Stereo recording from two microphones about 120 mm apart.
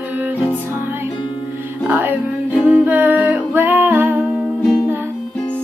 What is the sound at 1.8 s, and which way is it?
Music, 15° right (ahead or behind).